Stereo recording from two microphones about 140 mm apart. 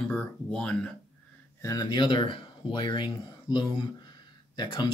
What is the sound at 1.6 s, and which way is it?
Speech, 30° left (ahead or behind).